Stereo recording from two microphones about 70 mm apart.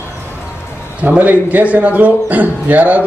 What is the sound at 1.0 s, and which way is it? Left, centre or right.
A man's voice, right.